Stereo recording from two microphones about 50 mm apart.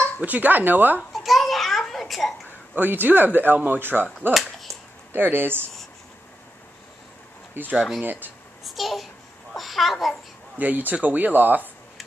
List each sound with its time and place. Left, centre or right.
0.2 s speech: right
1.1 s babbling: centre
2.7 s speech: right
7.7 s speech: centre
8.0 s speech: right
8.6 s babbling: centre
10.6 s speech: right